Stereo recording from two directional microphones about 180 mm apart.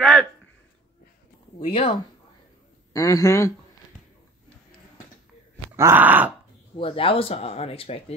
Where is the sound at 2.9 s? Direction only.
20° left (ahead or behind).